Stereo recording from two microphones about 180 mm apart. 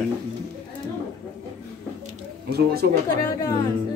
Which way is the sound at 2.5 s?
60° right (ahead or behind).